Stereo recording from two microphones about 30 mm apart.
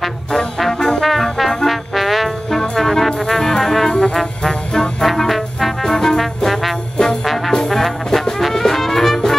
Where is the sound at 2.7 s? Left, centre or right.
Centre.